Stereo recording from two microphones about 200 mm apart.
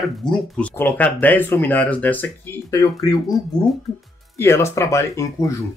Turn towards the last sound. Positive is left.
turn(degrees=15)  # may be behind; listen again after turning